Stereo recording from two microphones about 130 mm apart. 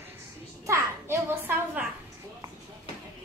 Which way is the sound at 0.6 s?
20° right (ahead or behind).